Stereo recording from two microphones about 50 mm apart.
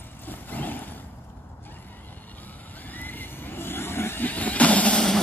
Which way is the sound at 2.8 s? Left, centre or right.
Left.